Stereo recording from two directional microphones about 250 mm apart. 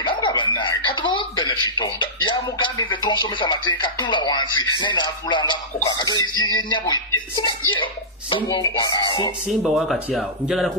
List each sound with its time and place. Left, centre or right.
0.0 s speech: centre
9.6 s speech: centre